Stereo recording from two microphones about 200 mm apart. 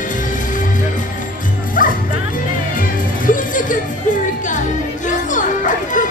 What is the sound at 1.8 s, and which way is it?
Music, 45° left (ahead or behind).